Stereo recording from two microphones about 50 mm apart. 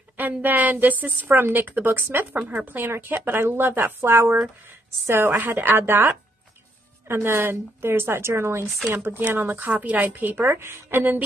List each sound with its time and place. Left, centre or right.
0.2 s a woman's voice: right
1.3 s speech: right
1.9 s speech: right
5.5 s a woman's voice: right
8.9 s speech: right
9.7 s a woman's voice: right
10.4 s a woman's voice: right